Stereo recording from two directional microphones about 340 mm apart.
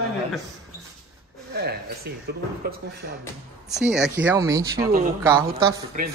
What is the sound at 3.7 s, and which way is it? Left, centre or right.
Speech, centre.